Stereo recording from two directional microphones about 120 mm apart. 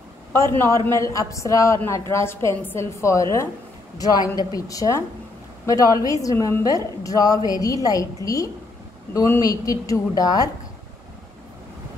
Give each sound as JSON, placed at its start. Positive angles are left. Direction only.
{"t": 0.6, "sound": "a woman's voice", "side_deg": 25}